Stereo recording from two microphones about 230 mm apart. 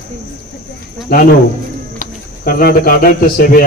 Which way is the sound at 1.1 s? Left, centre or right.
Left.